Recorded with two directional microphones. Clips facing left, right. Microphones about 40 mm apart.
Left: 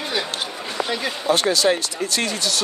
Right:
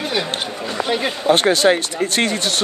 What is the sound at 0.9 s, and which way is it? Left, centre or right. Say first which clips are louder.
Speech: right 5 dB; right.